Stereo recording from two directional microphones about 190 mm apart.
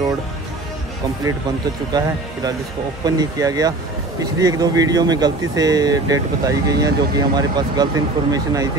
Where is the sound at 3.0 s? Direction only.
20° right (ahead or behind).